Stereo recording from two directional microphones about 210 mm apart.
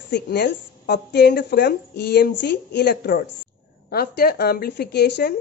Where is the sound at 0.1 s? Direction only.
55° left (ahead or behind).